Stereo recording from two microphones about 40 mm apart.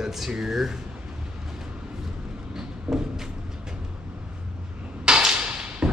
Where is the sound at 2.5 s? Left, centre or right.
Centre.